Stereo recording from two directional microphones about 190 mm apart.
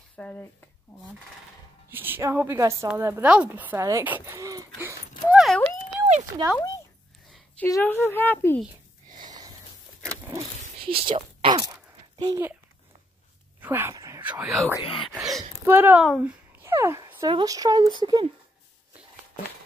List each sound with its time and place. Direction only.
0.2 s speech: 10° left (ahead or behind)
1.9 s a woman's voice: 10° right (ahead or behind)
5.3 s dog: centre (ahead or behind)
6.0 s a sound: 35° right (ahead or behind)
7.5 s speech: 10° left (ahead or behind)
9.2 s a sound: 20° right (ahead or behind)
10.0 s vehicle: 15° right (ahead or behind)
11.1 s speech: 25° right (ahead or behind)
13.6 s a sound: 10° right (ahead or behind)
14.4 s speech: centre (ahead or behind)
14.8 s speech: 25° left (ahead or behind)
15.1 s a sound: centre (ahead or behind)
15.6 s speech: 10° right (ahead or behind)